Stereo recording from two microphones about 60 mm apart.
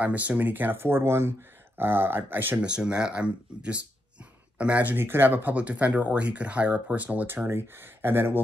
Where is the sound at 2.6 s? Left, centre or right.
Centre.